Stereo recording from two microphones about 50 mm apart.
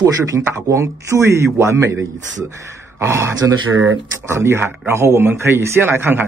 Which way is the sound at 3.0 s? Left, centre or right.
Right.